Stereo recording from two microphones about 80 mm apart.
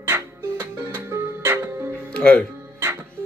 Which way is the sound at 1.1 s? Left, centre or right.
Right.